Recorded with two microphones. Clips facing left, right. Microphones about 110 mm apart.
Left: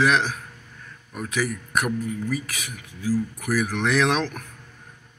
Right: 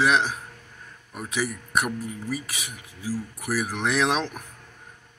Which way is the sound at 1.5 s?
10° right (ahead or behind).